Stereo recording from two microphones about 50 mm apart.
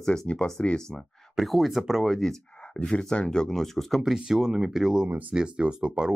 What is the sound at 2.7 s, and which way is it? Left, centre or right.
Speech, centre.